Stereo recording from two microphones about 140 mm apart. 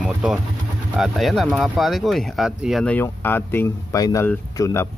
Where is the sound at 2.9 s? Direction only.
15° left (ahead or behind).